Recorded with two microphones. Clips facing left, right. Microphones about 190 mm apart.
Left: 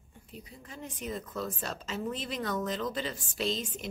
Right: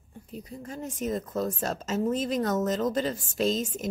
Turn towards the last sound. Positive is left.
turn(degrees=-45)  # may be behind; listen again after turning